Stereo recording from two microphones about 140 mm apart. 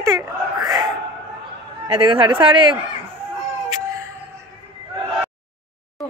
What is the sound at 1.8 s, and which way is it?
Speech, 35° right (ahead or behind).